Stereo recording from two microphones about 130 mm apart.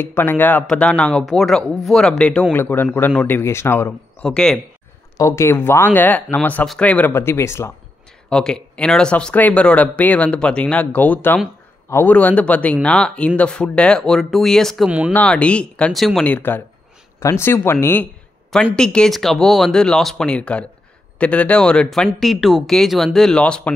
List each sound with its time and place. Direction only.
0.0 s speech: 15° left (ahead or behind)
4.2 s speech: 5° left (ahead or behind)
5.1 s speech: 25° left (ahead or behind)
8.3 s speech: 5° left (ahead or behind)
14.9 s speech: 10° right (ahead or behind)
15.1 s speech: 10° left (ahead or behind)
16.3 s speech: 15° left (ahead or behind)
18.8 s speech: 5° left (ahead or behind)